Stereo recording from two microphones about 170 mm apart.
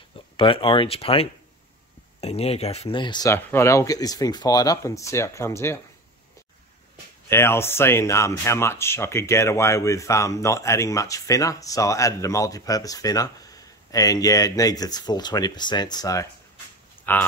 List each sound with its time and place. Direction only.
0.4 s speech: 30° left (ahead or behind); by 5.8 s 15° left (ahead or behind)
7.2 s speech: 15° left (ahead or behind)
17.0 s a sound: 10° left (ahead or behind)